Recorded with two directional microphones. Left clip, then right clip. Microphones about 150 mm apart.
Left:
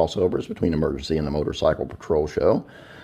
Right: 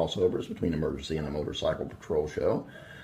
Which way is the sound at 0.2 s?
40° left (ahead or behind).